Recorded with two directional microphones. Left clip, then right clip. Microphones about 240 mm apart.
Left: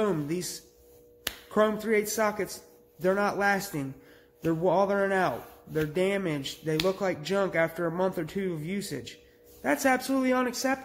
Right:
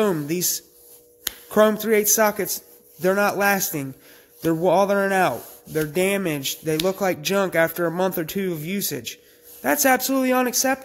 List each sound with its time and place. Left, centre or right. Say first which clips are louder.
0.0 s speech: right 7 dB; right